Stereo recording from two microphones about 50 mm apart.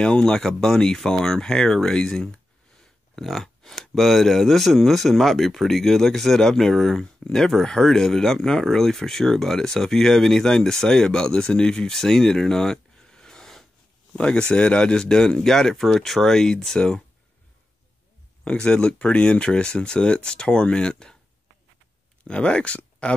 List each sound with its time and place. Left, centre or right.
0.0 s speech: centre
3.2 s a sound: centre
3.9 s speech: centre
18.4 s speech: left
22.3 s speech: left